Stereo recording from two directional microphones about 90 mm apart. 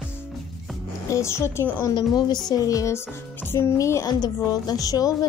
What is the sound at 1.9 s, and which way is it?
Speech, 50° left (ahead or behind).